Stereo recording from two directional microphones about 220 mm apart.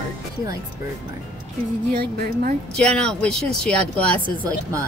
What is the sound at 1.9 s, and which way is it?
Speech, 40° right (ahead or behind).